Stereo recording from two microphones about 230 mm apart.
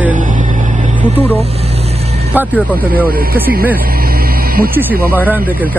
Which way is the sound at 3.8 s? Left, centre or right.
Right.